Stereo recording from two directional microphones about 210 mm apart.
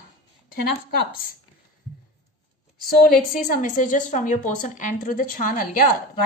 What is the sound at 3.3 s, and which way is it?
A woman's voice, 40° left (ahead or behind).